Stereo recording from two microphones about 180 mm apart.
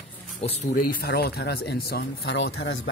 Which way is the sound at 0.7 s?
60° left (ahead or behind).